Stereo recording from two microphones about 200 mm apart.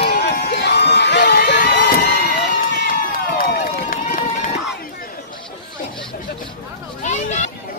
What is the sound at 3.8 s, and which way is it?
Run, 40° left (ahead or behind).